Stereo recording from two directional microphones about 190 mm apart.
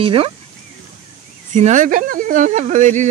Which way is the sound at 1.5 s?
40° right (ahead or behind).